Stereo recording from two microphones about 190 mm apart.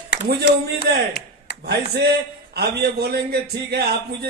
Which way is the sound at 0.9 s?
60° right (ahead or behind).